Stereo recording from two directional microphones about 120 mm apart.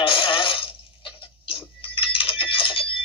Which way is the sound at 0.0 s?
45° left (ahead or behind).